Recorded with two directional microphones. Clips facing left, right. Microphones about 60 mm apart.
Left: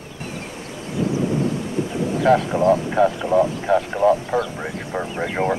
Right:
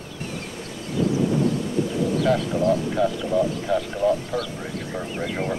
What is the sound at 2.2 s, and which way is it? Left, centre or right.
Speech, left.